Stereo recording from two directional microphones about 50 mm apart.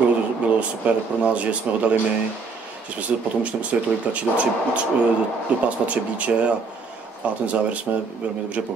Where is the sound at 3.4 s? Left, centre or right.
Right.